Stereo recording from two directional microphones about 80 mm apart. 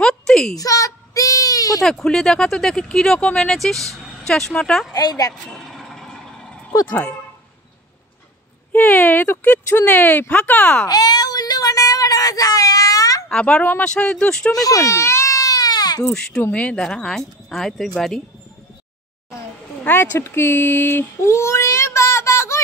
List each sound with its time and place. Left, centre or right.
0.0 s a sound: centre
0.6 s child singing: left
1.8 s speech: centre
4.9 s a woman's voice: left
5.5 s vehicle: centre
8.7 s speech: left
10.9 s a sound: left
13.3 s speech: centre
14.5 s baby cry: left
16.0 s speech: centre
19.8 s speech: left
21.2 s child singing: left